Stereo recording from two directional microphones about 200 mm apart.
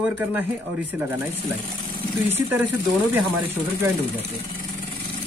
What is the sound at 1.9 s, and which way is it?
Vehicle, 30° left (ahead or behind).